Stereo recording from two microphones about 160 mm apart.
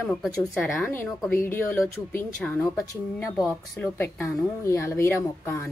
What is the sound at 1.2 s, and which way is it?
Speech, 15° left (ahead or behind).